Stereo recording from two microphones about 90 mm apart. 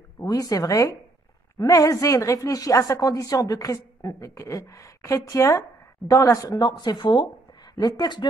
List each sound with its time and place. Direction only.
0.2 s speech: 40° left (ahead or behind)
6.6 s speech: 50° left (ahead or behind)